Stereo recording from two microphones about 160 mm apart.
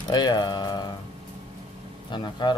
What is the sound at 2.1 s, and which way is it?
Speech, 30° left (ahead or behind).